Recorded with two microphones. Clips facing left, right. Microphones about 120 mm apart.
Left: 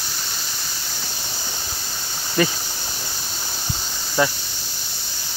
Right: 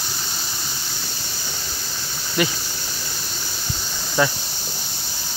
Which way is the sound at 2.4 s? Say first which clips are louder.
Left 2 dB; 35° left (ahead or behind).